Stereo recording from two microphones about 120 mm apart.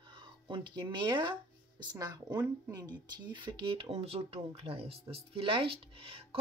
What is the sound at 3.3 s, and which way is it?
Speech, 40° right (ahead or behind).